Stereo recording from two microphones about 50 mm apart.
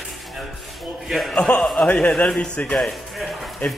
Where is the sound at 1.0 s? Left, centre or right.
Centre.